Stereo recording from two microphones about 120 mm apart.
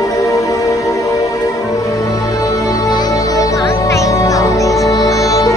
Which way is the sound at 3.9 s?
25° left (ahead or behind).